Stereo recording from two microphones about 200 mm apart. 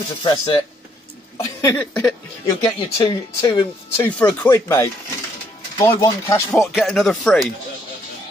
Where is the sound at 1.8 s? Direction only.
5° left (ahead or behind).